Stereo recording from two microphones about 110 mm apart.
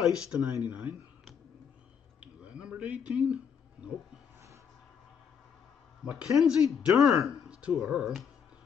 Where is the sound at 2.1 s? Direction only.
10° right (ahead or behind).